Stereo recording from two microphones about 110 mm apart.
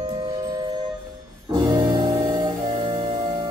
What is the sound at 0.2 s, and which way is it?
Music, 30° right (ahead or behind).